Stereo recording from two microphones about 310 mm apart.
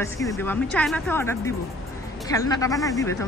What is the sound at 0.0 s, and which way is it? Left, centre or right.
Speech, centre.